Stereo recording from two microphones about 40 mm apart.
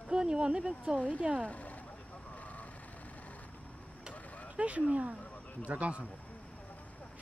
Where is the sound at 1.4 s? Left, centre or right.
Left.